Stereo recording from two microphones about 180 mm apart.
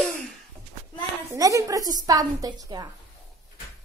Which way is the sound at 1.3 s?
15° right (ahead or behind).